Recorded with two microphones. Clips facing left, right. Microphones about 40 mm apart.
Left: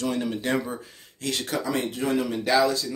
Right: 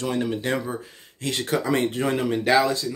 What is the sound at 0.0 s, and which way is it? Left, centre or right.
Speech, centre.